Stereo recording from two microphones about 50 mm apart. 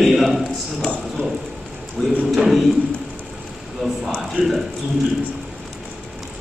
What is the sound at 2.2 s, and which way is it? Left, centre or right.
Speech, centre.